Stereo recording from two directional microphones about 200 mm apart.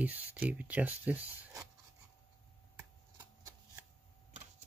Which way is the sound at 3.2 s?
15° right (ahead or behind).